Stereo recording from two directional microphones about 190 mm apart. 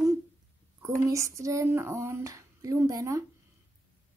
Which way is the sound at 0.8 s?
15° right (ahead or behind).